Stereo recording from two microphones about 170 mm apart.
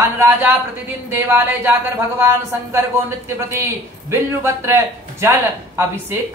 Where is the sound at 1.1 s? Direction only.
10° right (ahead or behind).